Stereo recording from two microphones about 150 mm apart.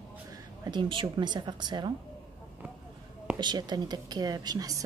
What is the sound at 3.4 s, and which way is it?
Speech, 30° right (ahead or behind).